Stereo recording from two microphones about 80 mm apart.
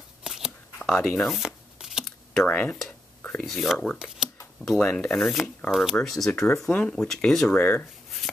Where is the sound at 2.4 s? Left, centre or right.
Left.